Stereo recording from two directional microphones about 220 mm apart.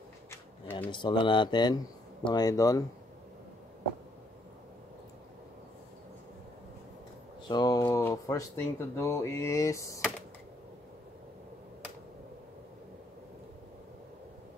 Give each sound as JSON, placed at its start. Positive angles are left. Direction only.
{"t": 0.3, "sound": "a sound", "side_deg": 10}
{"t": 0.9, "sound": "speech", "side_deg": 20}
{"t": 7.4, "sound": "speech", "side_deg": 20}